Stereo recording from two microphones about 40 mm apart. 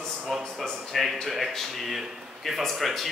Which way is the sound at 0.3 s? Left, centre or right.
Centre.